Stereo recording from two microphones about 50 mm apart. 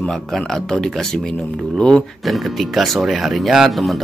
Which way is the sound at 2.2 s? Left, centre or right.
Centre.